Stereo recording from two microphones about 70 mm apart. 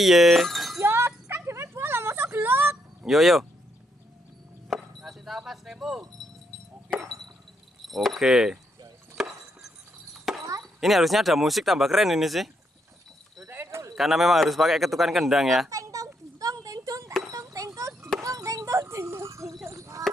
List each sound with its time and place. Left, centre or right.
0.0 s speech: centre
0.8 s a sound: right
3.1 s speech: centre
4.6 s chopping: centre
7.8 s speech: centre
9.1 s a sound: centre
10.8 s speech: centre
13.5 s clip-clop: right
13.9 s speech: centre
15.7 s a sound: right